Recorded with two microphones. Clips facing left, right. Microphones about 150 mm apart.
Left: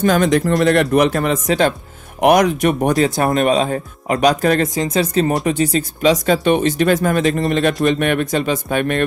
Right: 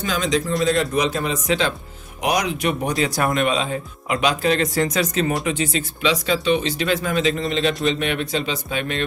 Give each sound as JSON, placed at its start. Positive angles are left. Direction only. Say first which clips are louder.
{"t": 0.0, "sound": "a man's voice", "louder": "left 8 dB", "side_deg": 55}
{"t": 3.2, "sound": "speech", "louder": "left 5 dB", "side_deg": 35}
{"t": 4.7, "sound": "speech", "louder": "left 4 dB", "side_deg": 25}